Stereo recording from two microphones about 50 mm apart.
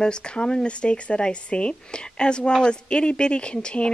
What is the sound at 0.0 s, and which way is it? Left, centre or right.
Speech, centre.